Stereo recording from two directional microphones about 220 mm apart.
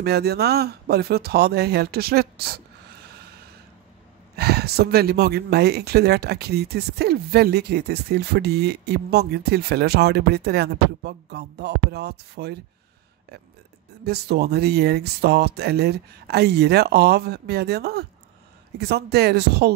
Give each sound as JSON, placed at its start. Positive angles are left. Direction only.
{"t": 0.0, "sound": "speech", "side_deg": -45}
{"t": 4.4, "sound": "speech", "side_deg": -45}
{"t": 14.0, "sound": "speech", "side_deg": -45}